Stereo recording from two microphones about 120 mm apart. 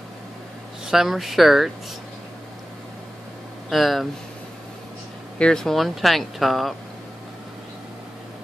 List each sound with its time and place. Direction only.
0.8 s speech: 5° right (ahead or behind)
3.7 s speech: centre (ahead or behind)
5.4 s speech: 5° left (ahead or behind)